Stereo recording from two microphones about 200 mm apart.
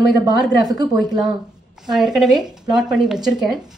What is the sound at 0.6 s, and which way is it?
Speech, 20° right (ahead or behind).